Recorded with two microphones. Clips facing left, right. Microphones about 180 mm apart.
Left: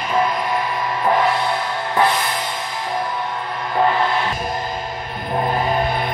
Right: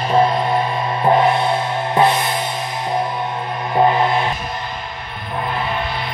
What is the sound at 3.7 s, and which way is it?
Music, 20° right (ahead or behind).